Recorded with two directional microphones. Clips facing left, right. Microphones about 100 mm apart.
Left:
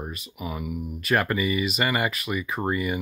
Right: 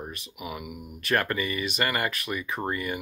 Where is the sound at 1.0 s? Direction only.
5° left (ahead or behind).